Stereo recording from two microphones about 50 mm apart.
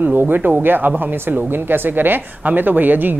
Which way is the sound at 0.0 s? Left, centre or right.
Right.